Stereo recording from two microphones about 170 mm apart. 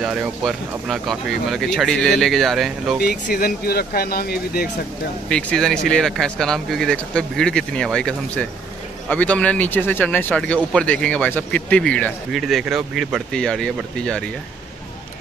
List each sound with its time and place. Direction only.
0.0 s speech: centre (ahead or behind)
3.3 s speech: 65° left (ahead or behind)
5.3 s speech: 5° left (ahead or behind)